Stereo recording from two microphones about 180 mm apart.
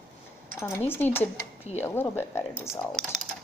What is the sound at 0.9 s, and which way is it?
A woman's voice, 10° left (ahead or behind).